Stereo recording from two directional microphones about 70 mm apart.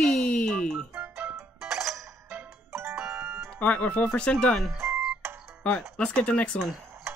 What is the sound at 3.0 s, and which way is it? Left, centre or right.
Music, right.